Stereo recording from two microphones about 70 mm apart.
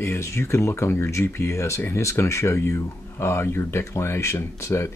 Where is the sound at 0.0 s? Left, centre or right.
Left.